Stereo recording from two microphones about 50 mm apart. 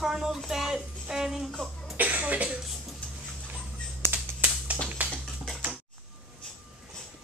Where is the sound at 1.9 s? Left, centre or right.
Right.